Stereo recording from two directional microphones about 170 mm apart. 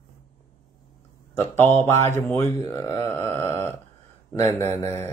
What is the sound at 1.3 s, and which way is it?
Speech, 15° left (ahead or behind).